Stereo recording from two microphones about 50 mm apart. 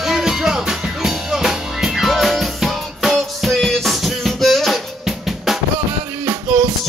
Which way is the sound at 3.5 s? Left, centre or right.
Centre.